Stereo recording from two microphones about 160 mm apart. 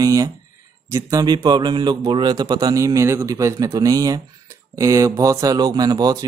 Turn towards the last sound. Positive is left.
turn(degrees=-25)  # may be behind; listen again after turning